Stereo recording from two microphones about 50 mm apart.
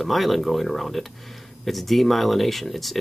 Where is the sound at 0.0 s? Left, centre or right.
Centre.